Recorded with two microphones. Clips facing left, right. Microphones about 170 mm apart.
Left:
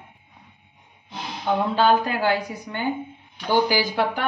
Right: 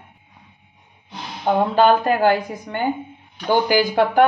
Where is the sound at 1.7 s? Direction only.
50° right (ahead or behind).